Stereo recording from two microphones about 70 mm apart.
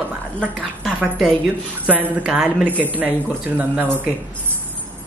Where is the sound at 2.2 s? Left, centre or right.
Centre.